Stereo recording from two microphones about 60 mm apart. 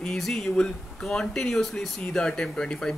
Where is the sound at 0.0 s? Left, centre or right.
Centre.